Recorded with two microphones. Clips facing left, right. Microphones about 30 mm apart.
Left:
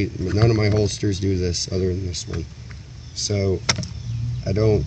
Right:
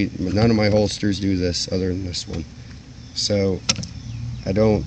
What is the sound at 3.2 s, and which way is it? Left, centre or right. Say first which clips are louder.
Speech: right 3 dB; right.